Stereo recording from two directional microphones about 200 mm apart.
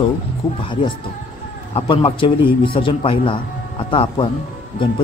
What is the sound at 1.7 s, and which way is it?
A man's voice, 25° left (ahead or behind).